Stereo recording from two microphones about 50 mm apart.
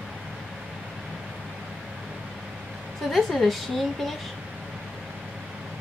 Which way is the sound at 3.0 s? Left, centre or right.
Centre.